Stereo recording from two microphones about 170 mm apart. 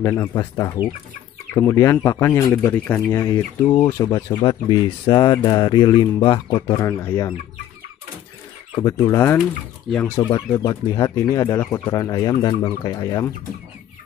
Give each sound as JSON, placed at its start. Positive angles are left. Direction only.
{"t": 0.0, "sound": "speech", "side_deg": 15}
{"t": 8.8, "sound": "speech", "side_deg": 20}
{"t": 10.6, "sound": "speech", "side_deg": 20}